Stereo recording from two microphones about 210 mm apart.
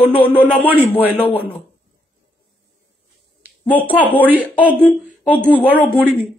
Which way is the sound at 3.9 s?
10° left (ahead or behind).